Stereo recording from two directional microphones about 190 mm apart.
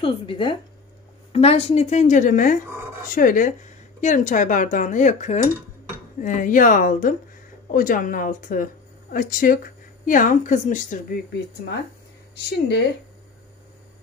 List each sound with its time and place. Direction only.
0.0 s a woman's voice: 25° left (ahead or behind)